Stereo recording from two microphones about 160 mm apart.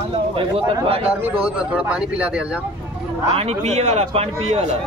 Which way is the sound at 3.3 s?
40° right (ahead or behind).